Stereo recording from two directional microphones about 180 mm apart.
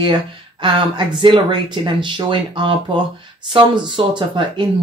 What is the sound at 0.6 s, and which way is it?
Speech, 25° right (ahead or behind).